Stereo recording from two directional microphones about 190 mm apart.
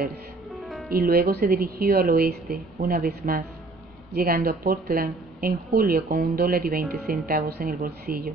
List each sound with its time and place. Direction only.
0.5 s music: centre (ahead or behind)
0.8 s speech: 50° right (ahead or behind)